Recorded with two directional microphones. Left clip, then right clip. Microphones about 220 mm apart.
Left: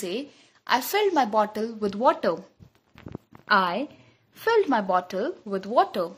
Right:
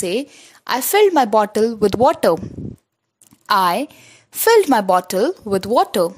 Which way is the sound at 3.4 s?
50° right (ahead or behind).